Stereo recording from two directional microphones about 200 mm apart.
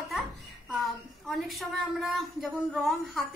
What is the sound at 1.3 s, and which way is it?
Speech, centre (ahead or behind).